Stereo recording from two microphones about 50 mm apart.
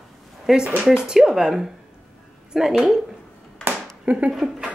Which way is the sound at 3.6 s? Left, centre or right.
Centre.